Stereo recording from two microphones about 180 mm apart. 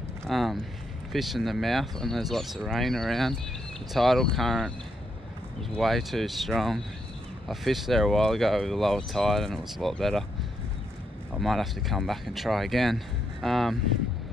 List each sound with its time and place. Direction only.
0.3 s speech: centre (ahead or behind)
5.8 s speech: centre (ahead or behind)
11.3 s speech: centre (ahead or behind)